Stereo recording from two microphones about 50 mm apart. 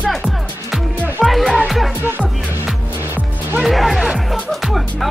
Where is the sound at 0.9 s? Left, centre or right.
Right.